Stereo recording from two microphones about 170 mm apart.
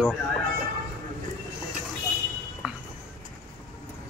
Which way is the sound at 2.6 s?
5° right (ahead or behind).